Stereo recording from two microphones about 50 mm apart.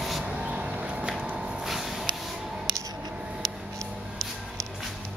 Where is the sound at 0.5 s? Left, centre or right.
Right.